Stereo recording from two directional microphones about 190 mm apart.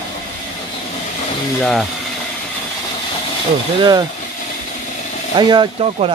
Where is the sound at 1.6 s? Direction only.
5° left (ahead or behind).